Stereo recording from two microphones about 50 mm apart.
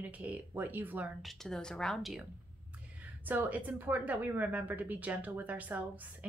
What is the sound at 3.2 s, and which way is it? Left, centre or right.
Speech, right.